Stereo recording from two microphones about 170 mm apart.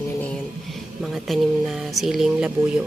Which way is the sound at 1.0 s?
Centre (ahead or behind).